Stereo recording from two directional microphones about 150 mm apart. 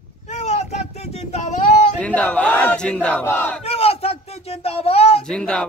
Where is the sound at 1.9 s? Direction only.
10° left (ahead or behind).